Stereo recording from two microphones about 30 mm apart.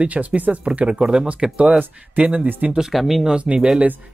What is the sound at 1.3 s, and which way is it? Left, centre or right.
Speech, right.